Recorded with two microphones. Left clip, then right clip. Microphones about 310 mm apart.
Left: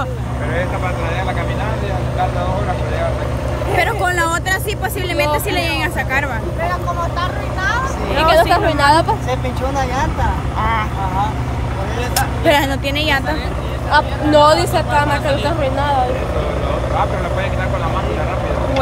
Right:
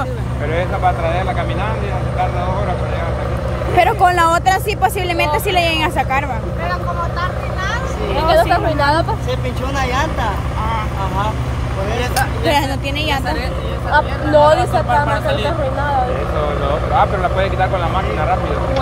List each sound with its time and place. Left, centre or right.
3.7 s speech: centre
8.3 s speech: left
12.2 s speech: centre
13.9 s speech: left